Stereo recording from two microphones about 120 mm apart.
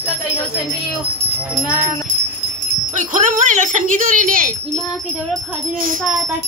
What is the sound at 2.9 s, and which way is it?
Speech, 90° right.